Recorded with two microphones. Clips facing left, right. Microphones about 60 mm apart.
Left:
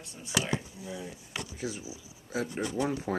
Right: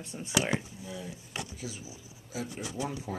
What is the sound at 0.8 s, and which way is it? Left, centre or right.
Speech, centre.